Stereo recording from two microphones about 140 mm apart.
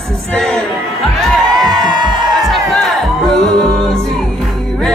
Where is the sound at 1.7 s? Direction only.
30° right (ahead or behind).